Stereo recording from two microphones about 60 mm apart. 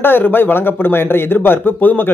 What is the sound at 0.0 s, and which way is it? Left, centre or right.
Speech, left.